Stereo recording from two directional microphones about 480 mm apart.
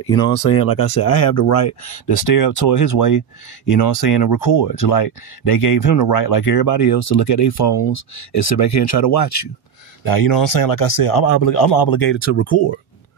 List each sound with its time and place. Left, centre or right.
0.0 s speech: left
7.0 s speech: left